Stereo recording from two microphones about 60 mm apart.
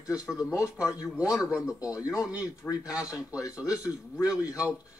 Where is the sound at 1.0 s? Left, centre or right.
Centre.